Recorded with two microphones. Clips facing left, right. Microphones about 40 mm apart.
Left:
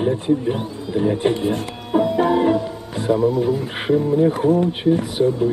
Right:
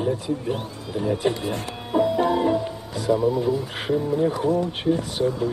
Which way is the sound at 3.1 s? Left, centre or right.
Centre.